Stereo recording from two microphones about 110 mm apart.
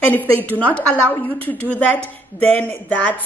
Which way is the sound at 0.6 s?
10° left (ahead or behind).